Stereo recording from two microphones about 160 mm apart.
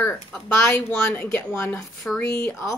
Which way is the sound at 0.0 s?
10° left (ahead or behind).